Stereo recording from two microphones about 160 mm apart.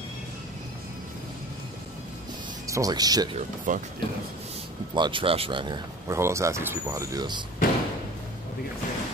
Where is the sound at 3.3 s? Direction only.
55° right (ahead or behind).